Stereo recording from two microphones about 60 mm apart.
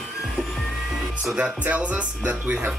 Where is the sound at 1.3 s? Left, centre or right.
Right.